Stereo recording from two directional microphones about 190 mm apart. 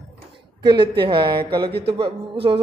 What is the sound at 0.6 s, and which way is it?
Speech, 25° right (ahead or behind).